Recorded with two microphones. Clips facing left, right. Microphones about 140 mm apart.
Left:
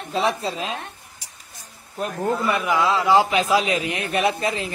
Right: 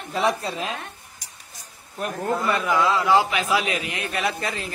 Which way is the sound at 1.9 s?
20° left (ahead or behind).